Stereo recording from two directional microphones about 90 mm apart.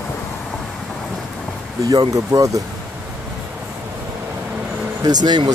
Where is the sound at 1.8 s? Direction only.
45° right (ahead or behind).